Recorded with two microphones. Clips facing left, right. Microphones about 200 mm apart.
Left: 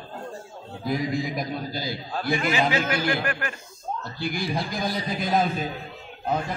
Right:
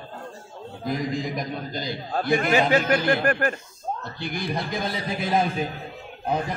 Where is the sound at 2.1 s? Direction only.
50° right (ahead or behind).